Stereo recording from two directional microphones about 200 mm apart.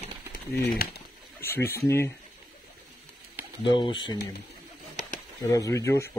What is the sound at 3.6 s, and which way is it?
Speech, 25° left (ahead or behind).